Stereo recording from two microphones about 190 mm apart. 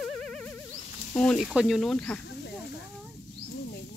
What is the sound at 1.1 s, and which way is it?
Speech, 5° left (ahead or behind).